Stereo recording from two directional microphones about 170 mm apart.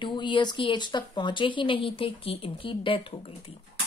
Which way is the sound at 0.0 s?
25° left (ahead or behind).